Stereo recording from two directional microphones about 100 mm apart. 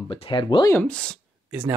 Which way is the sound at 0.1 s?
60° left (ahead or behind).